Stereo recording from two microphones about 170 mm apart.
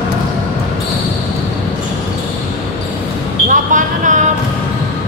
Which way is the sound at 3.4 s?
50° right (ahead or behind).